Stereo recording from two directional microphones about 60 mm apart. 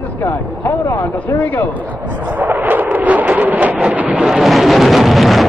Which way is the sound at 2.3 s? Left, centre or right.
Right.